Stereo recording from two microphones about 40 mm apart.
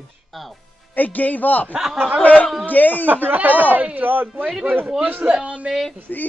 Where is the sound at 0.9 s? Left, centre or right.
Left.